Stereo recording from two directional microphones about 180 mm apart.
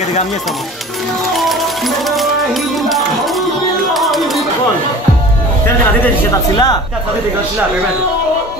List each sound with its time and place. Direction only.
1.3 s music: centre (ahead or behind)
6.5 s speech: 20° left (ahead or behind)